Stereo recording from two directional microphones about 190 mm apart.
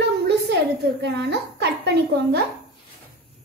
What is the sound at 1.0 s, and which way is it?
A woman's voice, 60° right (ahead or behind).